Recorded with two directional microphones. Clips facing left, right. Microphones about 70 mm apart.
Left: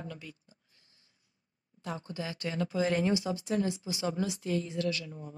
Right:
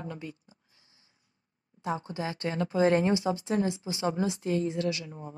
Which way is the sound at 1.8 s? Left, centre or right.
Right.